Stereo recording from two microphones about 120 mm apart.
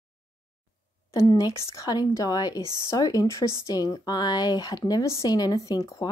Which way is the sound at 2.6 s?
35° right (ahead or behind).